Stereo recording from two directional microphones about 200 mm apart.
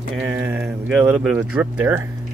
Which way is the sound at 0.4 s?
10° right (ahead or behind).